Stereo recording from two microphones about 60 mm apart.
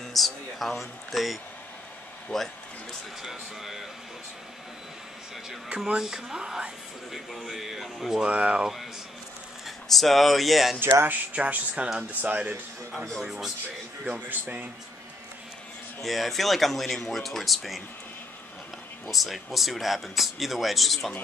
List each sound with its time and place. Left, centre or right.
0.0 s speech: centre
2.3 s a man's voice: left
3.2 s speech: centre
5.9 s speech: centre
7.1 s speech: centre
8.2 s speech: right
9.7 s speech: centre
10.8 s speech: right
11.3 s speech: right
12.9 s speech: centre
13.2 s speech: centre
14.3 s speech: right
16.0 s speech: centre
19.0 s speech: centre